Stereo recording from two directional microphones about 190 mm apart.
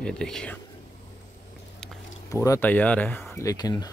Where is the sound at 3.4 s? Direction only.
20° left (ahead or behind).